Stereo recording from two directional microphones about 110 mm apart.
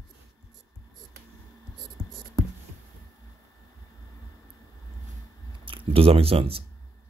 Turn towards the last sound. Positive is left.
turn(degrees=-60)  # may be behind; listen again after turning